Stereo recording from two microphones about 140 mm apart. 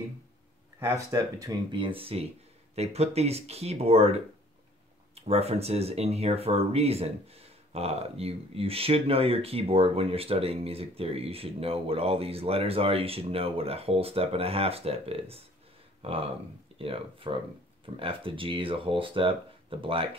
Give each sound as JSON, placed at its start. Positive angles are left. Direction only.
{"t": 0.7, "sound": "speech", "side_deg": -20}